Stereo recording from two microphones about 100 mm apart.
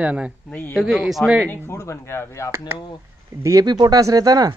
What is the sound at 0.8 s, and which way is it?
Speech, 5° right (ahead or behind).